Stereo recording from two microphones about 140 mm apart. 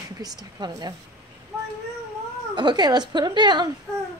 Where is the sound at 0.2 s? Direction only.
30° right (ahead or behind).